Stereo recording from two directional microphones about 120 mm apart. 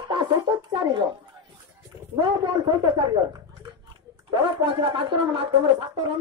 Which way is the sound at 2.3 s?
40° right (ahead or behind).